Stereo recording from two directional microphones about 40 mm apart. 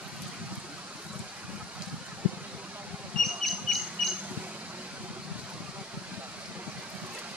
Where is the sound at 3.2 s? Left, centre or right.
Centre.